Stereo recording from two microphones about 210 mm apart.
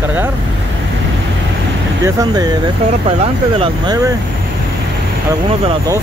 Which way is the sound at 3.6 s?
20° right (ahead or behind).